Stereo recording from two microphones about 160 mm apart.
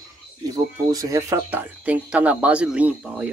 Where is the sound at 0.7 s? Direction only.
20° right (ahead or behind).